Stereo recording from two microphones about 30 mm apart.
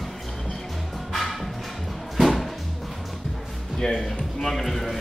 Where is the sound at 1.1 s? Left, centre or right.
Centre.